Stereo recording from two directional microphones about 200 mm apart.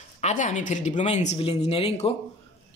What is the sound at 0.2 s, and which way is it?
A man's voice, 40° left (ahead or behind).